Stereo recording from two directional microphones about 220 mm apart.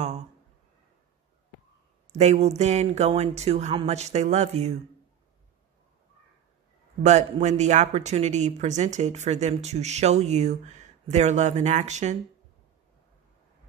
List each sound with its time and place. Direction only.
2.1 s speech: 30° right (ahead or behind)
7.0 s speech: 30° right (ahead or behind)